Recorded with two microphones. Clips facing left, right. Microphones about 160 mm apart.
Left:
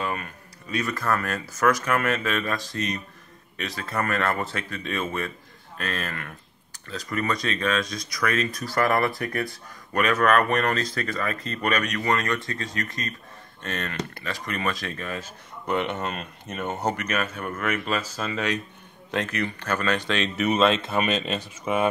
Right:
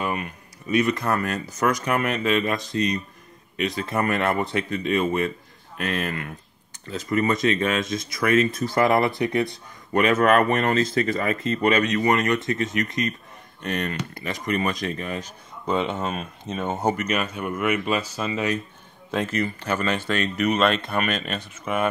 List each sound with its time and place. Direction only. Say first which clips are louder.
0.0 s a sound: right 3 dB; 15° right (ahead or behind)
0.7 s speech: right 4 dB; 20° right (ahead or behind)
16.0 s speech: right 3 dB; 5° right (ahead or behind)
20.1 s speech: right 1 dB; centre (ahead or behind)